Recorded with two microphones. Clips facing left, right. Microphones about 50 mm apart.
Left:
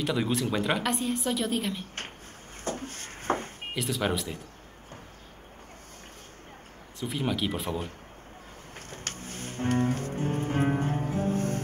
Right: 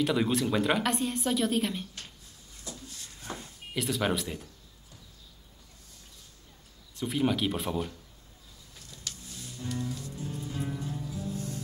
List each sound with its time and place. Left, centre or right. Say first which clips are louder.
0.0 s speech: right 1 dB; centre
2.6 s a sound: left 10 dB; left
3.7 s speech: even; centre
7.0 s speech: right 2 dB; centre
8.7 s music: left 5 dB; left